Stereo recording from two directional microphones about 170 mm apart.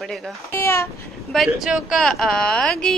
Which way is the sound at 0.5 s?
15° left (ahead or behind).